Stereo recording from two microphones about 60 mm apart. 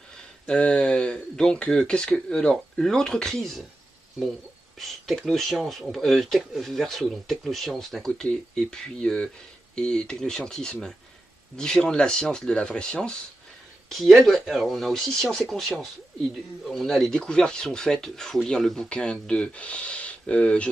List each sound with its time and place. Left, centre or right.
0.5 s speech: centre
4.7 s speech: centre
13.8 s speech: centre